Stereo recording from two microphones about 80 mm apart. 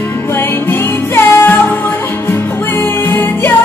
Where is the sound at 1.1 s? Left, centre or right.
Left.